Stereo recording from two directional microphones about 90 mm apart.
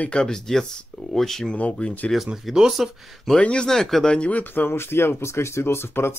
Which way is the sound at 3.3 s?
10° left (ahead or behind).